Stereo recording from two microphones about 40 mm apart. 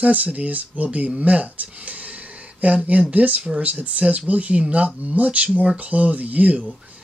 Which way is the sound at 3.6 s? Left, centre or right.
Right.